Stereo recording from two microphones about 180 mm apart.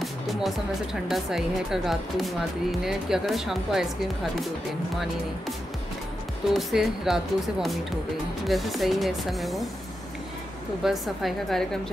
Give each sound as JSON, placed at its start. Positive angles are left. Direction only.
{"t": 0.0, "sound": "music", "side_deg": 0}
{"t": 1.0, "sound": "speech", "side_deg": 0}
{"t": 6.5, "sound": "speech", "side_deg": 0}
{"t": 10.8, "sound": "speech", "side_deg": 0}